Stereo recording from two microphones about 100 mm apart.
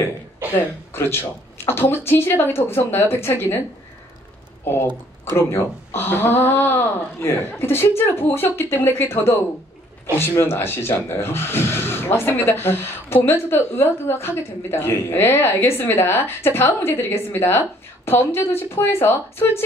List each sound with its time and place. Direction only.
0.5 s speech: 25° left (ahead or behind)
5.3 s speech: 25° left (ahead or behind)